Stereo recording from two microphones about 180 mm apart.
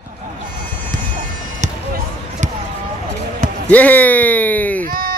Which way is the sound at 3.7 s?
10° left (ahead or behind).